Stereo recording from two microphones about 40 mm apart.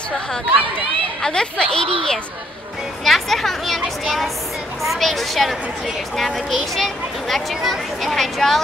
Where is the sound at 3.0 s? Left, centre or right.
Centre.